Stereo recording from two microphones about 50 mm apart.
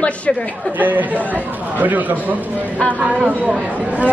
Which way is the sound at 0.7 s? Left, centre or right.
Right.